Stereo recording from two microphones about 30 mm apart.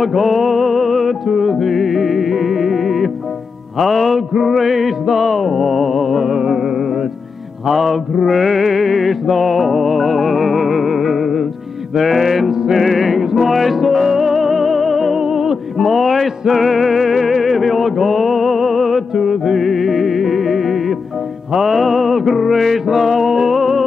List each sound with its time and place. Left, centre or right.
0.0 s music: centre
6.3 s music: centre
7.6 s music: centre
15.1 s music: centre
15.8 s music: centre